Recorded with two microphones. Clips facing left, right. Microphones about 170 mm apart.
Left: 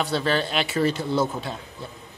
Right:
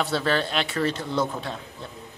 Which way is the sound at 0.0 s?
Centre (ahead or behind).